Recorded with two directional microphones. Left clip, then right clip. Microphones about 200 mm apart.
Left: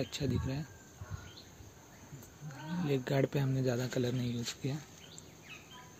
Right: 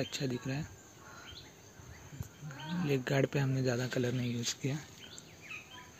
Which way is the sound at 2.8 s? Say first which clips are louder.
Right 1 dB; centre (ahead or behind).